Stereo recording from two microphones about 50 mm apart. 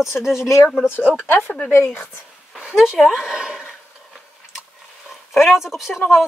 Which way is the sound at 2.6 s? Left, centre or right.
Centre.